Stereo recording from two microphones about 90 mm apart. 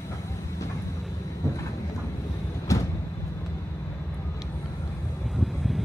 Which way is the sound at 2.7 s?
35° left (ahead or behind).